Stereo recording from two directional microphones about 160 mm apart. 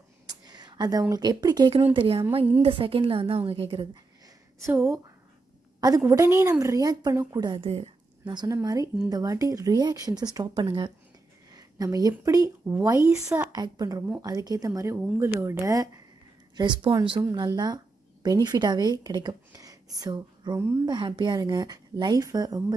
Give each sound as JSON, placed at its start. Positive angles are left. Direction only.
{"t": 0.3, "sound": "a woman's voice", "side_deg": -25}
{"t": 4.6, "sound": "speech", "side_deg": -20}
{"t": 8.4, "sound": "speech", "side_deg": -20}